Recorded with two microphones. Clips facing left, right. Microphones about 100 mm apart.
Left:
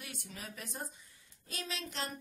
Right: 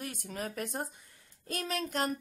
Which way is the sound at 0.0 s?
45° right (ahead or behind).